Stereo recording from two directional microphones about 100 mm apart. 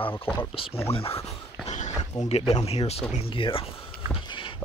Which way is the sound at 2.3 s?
90° left.